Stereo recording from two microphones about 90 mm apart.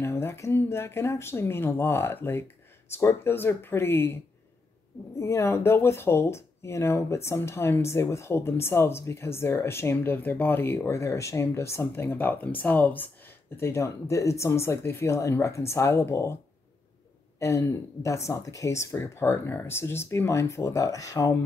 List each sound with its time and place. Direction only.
0.0 s speech: 30° left (ahead or behind)
5.2 s speech: 30° left (ahead or behind)
17.4 s speech: 35° left (ahead or behind)